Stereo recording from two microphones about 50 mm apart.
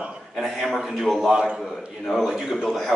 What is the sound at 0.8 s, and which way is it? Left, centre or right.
Speech, centre.